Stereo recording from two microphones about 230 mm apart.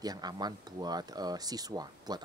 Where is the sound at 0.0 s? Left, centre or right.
Centre.